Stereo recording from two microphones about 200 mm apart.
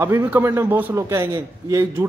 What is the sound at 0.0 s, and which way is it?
A man's voice, 10° right (ahead or behind).